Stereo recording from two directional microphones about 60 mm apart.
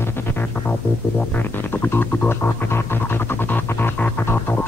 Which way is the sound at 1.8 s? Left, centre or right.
Left.